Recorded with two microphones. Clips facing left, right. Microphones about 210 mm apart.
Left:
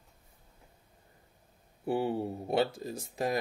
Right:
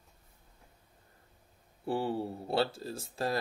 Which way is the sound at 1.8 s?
15° left (ahead or behind).